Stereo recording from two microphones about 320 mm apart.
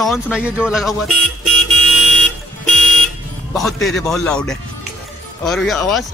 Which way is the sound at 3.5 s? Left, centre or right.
Centre.